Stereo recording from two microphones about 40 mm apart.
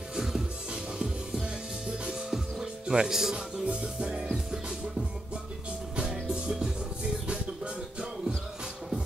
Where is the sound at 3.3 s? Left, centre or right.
Right.